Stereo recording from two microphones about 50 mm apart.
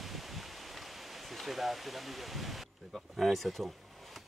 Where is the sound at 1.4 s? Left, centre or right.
Centre.